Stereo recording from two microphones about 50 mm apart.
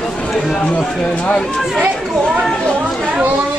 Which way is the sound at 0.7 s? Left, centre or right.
Left.